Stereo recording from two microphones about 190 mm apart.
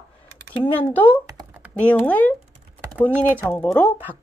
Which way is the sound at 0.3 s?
65° right (ahead or behind).